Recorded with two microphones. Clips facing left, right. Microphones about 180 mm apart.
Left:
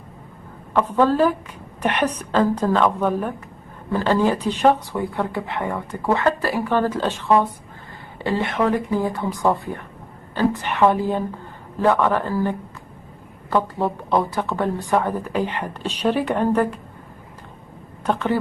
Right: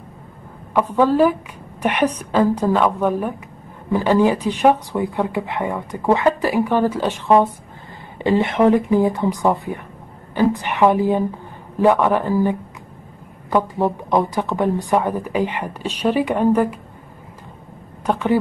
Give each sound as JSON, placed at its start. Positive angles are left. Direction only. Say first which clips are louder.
{"t": 0.7, "sound": "speech", "louder": "right 2 dB", "side_deg": -10}
{"t": 18.0, "sound": "speech", "louder": "right 3 dB", "side_deg": -10}